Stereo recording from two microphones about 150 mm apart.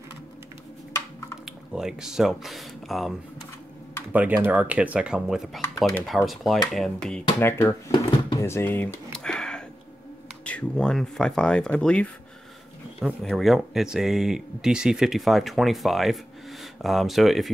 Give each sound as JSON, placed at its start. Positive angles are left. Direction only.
{"t": 0.9, "sound": "a sound", "side_deg": 20}
{"t": 1.7, "sound": "speech", "side_deg": -5}
{"t": 4.1, "sound": "speech", "side_deg": -10}
{"t": 7.3, "sound": "speech", "side_deg": 15}
{"t": 8.4, "sound": "a sound", "side_deg": 15}
{"t": 10.4, "sound": "speech", "side_deg": 5}
{"t": 13.2, "sound": "speech", "side_deg": 0}